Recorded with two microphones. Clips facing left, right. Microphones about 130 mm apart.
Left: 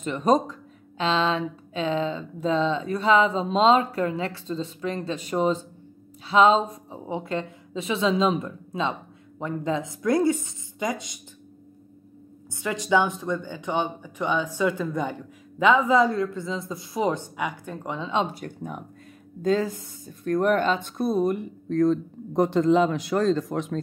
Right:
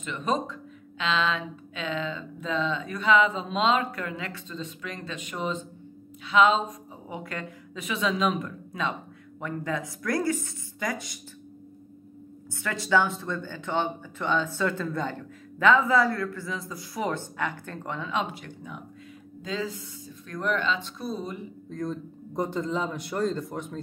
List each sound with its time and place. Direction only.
0.0 s a woman's voice: 40° left (ahead or behind); by 11.1 s 20° left (ahead or behind)
12.5 s speech: 15° left (ahead or behind)
18.1 s speech: 40° left (ahead or behind); by 23.8 s 90° left